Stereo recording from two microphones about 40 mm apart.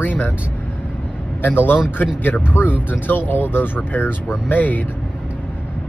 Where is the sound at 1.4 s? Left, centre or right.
Left.